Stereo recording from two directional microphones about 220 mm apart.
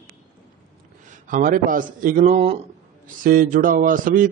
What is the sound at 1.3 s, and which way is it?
A man's voice, 40° right (ahead or behind).